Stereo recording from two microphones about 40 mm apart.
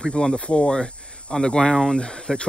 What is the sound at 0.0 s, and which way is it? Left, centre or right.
Speech, centre.